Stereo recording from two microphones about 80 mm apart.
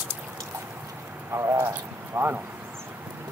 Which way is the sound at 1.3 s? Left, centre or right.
Right.